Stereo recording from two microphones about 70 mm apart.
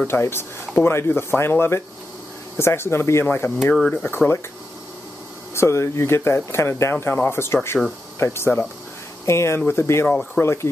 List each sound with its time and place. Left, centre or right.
0.0 s speech: left
5.5 s speech: left
10.0 s speech: left
10.4 s speech: left